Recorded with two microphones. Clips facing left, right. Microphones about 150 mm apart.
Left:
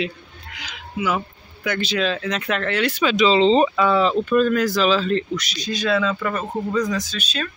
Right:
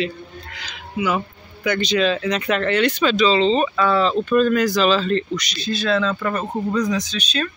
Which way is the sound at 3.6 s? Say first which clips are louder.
Even; 10° left (ahead or behind).